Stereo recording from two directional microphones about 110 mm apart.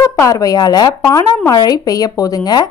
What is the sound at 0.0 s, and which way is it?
Speech, 30° left (ahead or behind).